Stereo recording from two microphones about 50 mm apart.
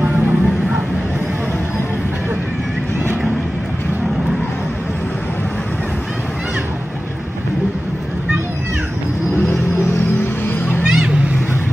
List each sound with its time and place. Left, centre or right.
0.1 s vehicle: right
10.5 s music: left
10.9 s vehicle: centre